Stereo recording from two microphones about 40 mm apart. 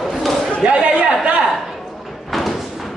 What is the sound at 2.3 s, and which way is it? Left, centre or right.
Door, centre.